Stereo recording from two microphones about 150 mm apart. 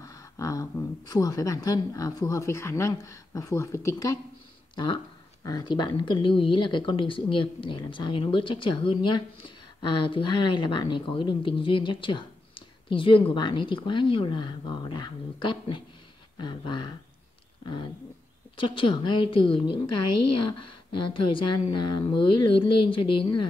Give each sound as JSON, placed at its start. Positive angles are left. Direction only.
{"t": 0.0, "sound": "speech", "side_deg": 20}
{"t": 18.6, "sound": "speech", "side_deg": 35}
{"t": 21.0, "sound": "speech", "side_deg": 35}